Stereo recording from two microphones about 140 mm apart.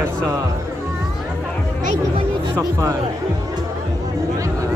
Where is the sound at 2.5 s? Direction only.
25° right (ahead or behind).